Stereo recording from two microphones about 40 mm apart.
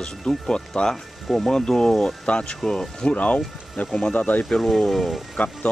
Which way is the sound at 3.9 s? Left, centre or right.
Left.